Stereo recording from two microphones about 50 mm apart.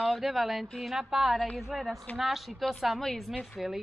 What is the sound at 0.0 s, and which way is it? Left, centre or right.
Speech, centre.